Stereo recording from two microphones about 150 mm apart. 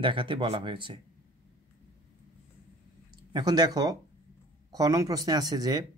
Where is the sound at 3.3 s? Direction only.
25° right (ahead or behind).